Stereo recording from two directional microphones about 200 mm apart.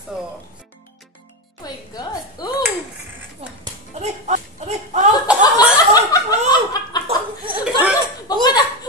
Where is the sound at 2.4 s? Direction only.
20° left (ahead or behind).